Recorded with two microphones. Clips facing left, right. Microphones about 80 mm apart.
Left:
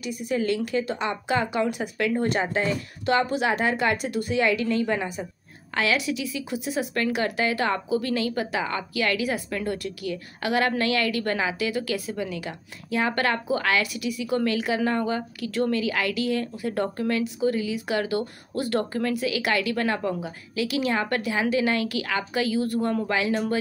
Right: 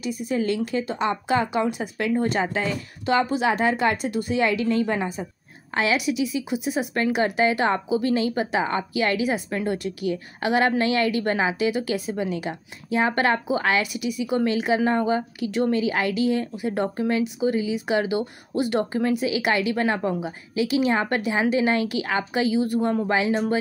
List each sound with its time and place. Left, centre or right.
0.5 s speech: right